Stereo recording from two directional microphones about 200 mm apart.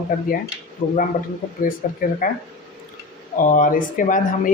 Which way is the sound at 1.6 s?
45° left (ahead or behind).